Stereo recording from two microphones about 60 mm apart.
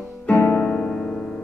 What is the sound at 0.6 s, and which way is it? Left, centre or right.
Piano, centre.